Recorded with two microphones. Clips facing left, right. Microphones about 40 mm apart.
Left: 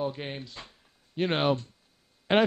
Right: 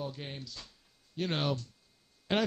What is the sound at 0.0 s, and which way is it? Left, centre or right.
A man's voice, left.